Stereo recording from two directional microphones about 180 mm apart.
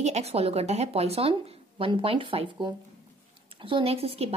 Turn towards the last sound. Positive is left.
turn(degrees=-35)  # may be behind; listen again after turning